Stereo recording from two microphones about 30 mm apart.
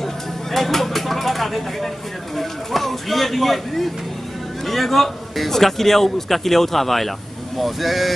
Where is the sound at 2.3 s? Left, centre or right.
Centre.